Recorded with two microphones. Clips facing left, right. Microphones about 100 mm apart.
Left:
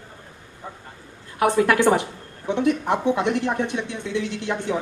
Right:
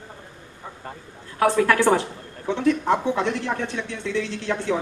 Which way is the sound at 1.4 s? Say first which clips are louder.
Even; 15° left (ahead or behind).